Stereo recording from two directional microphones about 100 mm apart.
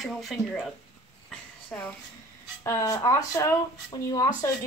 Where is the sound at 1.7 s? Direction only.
15° left (ahead or behind).